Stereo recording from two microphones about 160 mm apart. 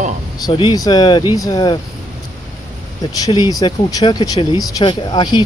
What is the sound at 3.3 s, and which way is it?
Speech, 25° left (ahead or behind).